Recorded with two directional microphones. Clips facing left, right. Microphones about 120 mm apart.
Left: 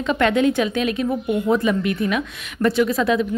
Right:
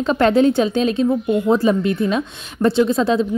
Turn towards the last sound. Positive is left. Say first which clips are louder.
# right 3 dB
turn(degrees=-30)  # may be behind; listen again after turning